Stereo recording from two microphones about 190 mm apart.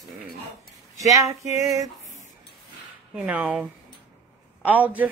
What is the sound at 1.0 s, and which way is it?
Speech, 15° right (ahead or behind).